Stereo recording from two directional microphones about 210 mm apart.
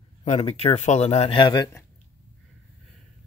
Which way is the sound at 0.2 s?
30° left (ahead or behind).